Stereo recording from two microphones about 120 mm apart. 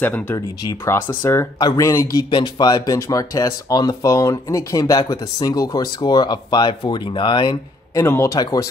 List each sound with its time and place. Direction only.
0.0 s speech: 15° left (ahead or behind); by 7.5 s 45° left (ahead or behind)
7.9 s speech: 25° left (ahead or behind)